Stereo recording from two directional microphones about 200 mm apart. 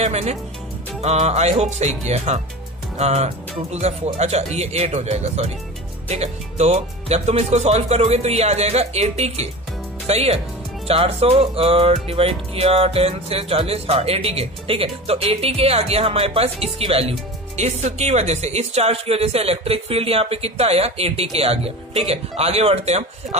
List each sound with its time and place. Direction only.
0.0 s speech: 35° right (ahead or behind)